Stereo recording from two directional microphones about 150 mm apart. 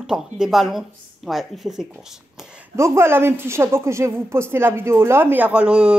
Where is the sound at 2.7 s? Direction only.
20° right (ahead or behind).